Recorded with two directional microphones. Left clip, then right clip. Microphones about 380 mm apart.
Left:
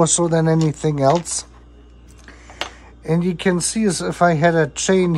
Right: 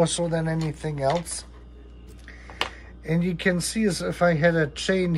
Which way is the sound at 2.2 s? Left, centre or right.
Centre.